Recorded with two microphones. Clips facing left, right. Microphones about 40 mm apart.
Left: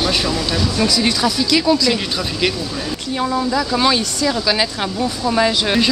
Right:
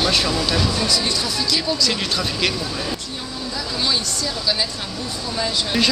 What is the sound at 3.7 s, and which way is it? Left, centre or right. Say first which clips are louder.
Speech: left 3 dB; left.